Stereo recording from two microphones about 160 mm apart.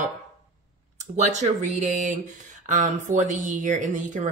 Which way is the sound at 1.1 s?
45° right (ahead or behind).